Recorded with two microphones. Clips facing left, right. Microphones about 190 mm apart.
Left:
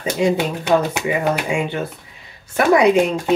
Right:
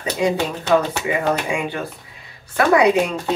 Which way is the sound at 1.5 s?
25° left (ahead or behind).